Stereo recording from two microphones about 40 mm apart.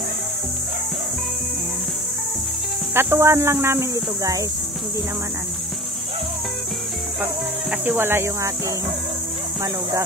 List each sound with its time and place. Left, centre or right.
2.9 s speech: right
7.8 s speech: right